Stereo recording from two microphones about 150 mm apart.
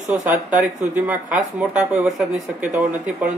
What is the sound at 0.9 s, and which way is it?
Speech, 10° right (ahead or behind).